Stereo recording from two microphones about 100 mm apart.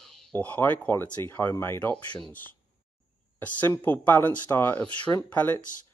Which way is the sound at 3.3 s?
20° left (ahead or behind).